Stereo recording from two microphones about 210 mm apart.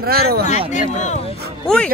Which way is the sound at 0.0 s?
45° right (ahead or behind).